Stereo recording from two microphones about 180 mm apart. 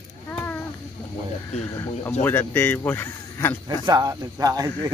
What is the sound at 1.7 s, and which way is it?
Speech, 15° left (ahead or behind).